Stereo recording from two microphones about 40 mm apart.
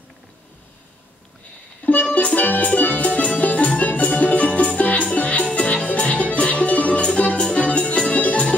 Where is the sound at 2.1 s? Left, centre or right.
Left.